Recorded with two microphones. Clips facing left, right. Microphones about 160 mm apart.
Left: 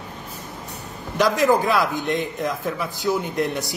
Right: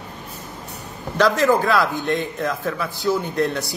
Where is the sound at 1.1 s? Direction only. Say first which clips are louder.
Right 1 dB; 20° left (ahead or behind).